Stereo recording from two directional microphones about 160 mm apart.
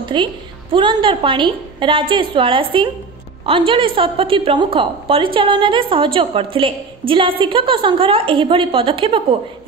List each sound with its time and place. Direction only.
0.0 s music: 30° right (ahead or behind)
0.7 s a woman's voice: 30° right (ahead or behind)